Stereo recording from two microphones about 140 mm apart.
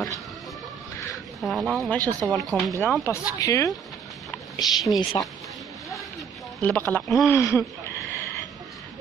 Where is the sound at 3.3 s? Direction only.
25° left (ahead or behind).